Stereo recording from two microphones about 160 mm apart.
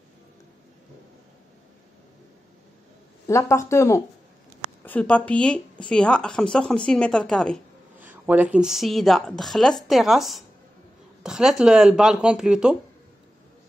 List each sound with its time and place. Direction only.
3.3 s speech: 20° left (ahead or behind)
8.0 s speech: 10° right (ahead or behind)